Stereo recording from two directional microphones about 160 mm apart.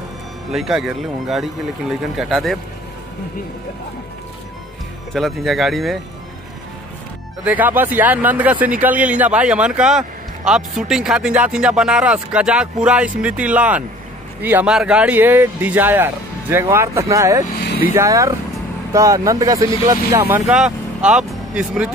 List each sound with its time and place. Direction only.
0.5 s speech: centre (ahead or behind)
5.1 s speech: centre (ahead or behind)
7.4 s speech: 10° right (ahead or behind)